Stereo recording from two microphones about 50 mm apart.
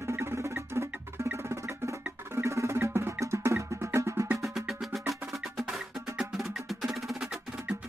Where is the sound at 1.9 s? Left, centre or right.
Right.